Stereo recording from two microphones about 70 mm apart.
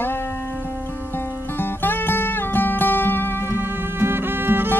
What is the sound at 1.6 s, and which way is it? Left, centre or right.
Music, left.